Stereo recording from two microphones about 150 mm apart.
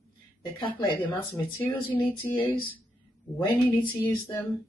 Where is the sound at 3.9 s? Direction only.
20° left (ahead or behind).